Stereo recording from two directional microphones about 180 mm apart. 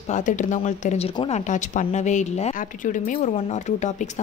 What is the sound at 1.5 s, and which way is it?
A woman's voice, 45° left (ahead or behind).